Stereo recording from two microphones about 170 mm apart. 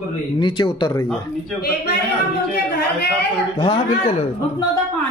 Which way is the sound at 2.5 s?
70° left (ahead or behind).